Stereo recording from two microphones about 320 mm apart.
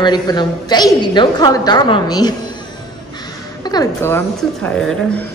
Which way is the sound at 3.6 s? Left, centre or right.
Centre.